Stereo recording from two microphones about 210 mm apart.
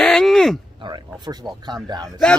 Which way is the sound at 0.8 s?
20° right (ahead or behind).